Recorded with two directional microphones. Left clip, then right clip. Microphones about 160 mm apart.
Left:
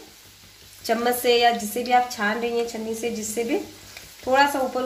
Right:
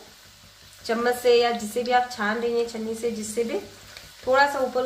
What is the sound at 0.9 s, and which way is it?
A woman's voice, 30° left (ahead or behind).